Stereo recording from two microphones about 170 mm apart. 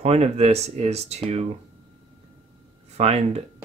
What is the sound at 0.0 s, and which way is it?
Speech, 35° right (ahead or behind).